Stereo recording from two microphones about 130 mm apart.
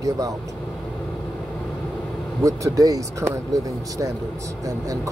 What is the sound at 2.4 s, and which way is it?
Speech, 25° right (ahead or behind).